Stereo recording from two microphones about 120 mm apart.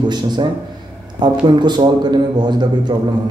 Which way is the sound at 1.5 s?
40° right (ahead or behind).